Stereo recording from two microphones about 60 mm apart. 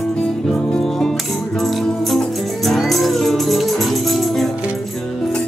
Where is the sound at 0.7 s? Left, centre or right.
Centre.